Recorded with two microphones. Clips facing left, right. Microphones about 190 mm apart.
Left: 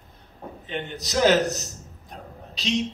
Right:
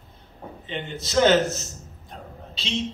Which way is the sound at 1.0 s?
Centre (ahead or behind).